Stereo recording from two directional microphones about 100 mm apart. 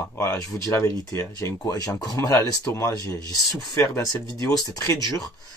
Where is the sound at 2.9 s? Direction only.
35° right (ahead or behind).